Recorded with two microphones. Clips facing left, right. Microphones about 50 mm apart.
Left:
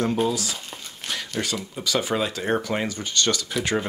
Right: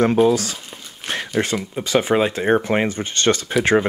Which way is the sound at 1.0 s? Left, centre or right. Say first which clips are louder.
Right 5 dB; right.